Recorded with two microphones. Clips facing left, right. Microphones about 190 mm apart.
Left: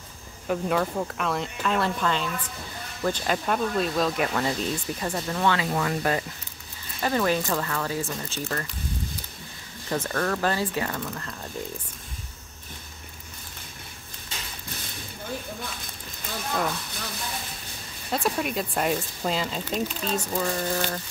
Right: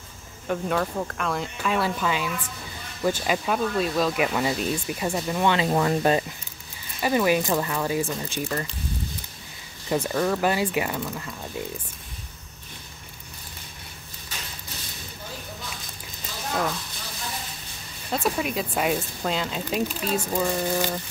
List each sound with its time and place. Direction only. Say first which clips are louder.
0.5 s speech: even; centre (ahead or behind); by 5.7 s 15° right (ahead or behind)
5.7 s speech: right 4 dB; 30° right (ahead or behind)
7.0 s speech: right 3 dB; 10° right (ahead or behind)
9.8 s speech: right 3 dB; 15° right (ahead or behind)
18.1 s speech: right 1 dB; centre (ahead or behind)